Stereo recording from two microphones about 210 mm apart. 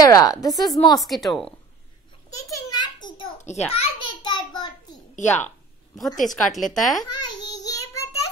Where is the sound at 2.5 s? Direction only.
20° left (ahead or behind).